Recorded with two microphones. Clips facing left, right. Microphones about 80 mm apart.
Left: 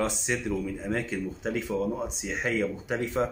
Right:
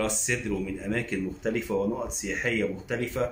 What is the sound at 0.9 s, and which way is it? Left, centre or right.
Speech, centre.